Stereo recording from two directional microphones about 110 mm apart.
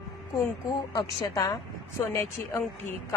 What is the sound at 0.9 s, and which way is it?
Speech, 40° left (ahead or behind).